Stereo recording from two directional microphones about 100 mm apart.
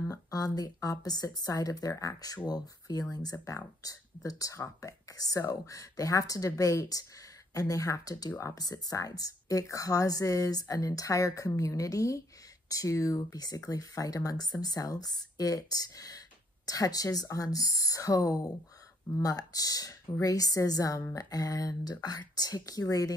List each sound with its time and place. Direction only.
0.1 s speech: 35° left (ahead or behind)